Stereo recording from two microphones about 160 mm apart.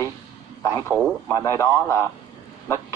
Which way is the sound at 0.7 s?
20° left (ahead or behind).